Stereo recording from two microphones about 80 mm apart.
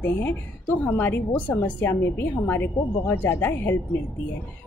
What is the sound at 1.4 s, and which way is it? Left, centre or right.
A woman's voice, left.